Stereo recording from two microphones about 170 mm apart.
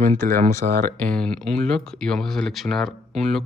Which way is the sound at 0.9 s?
5° left (ahead or behind).